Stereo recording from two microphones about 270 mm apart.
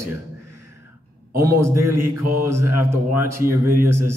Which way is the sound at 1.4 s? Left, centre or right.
Centre.